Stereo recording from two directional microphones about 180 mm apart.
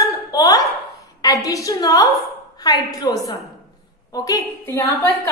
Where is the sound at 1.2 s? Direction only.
20° left (ahead or behind).